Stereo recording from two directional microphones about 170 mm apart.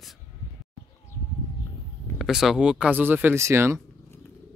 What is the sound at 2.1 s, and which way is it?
Speech, centre (ahead or behind).